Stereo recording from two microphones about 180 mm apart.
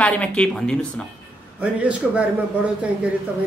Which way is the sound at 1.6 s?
5° right (ahead or behind).